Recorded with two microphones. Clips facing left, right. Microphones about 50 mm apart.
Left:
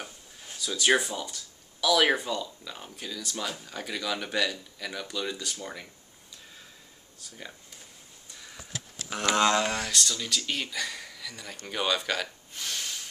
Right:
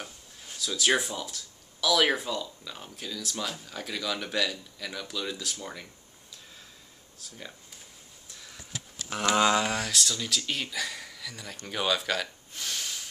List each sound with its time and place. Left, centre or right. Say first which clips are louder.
0.0 s speech: left 1 dB; centre
7.2 s speech: even; centre